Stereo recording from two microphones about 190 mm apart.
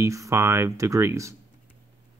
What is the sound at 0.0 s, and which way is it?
Speech, 15° right (ahead or behind).